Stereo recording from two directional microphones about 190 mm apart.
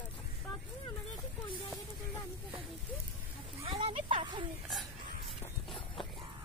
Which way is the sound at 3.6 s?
30° right (ahead or behind).